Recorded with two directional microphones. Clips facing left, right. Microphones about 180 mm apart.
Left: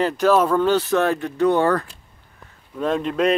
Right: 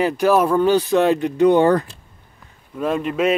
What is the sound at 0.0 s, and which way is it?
Speech, 10° right (ahead or behind).